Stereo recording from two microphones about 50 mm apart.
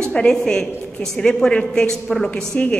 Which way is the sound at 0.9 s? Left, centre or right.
Centre.